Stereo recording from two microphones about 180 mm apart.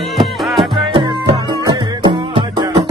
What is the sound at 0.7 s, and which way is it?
Music, 30° right (ahead or behind).